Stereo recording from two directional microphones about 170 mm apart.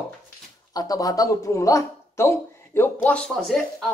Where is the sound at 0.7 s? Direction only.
20° left (ahead or behind); by 3.9 s centre (ahead or behind).